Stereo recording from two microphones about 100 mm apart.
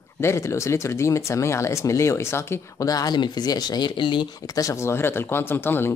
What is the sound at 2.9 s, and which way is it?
Speech, 40° left (ahead or behind).